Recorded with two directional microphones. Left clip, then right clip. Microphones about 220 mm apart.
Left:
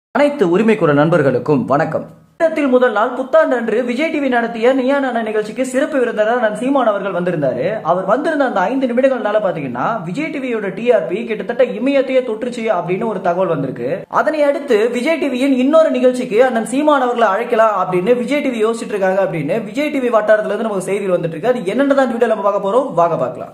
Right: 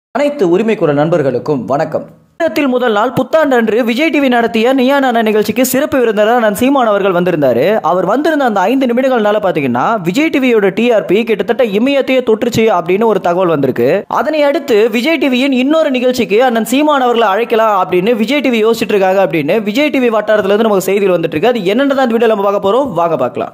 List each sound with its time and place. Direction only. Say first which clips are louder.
0.2 s speech: right 2 dB; 5° right (ahead or behind)
2.4 s speech: right 1 dB; 45° right (ahead or behind)
10.4 s speech: right 6 dB; 50° right (ahead or behind)